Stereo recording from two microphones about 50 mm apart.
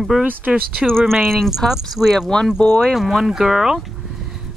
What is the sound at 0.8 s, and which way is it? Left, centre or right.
Speech, centre.